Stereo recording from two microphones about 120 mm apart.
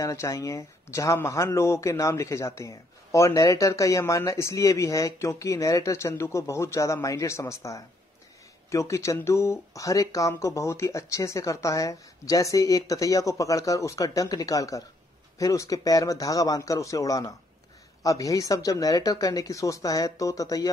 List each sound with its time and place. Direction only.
0.0 s speech: 25° left (ahead or behind)